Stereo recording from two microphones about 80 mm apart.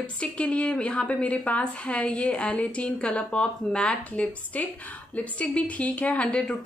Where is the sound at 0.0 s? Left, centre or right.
Centre.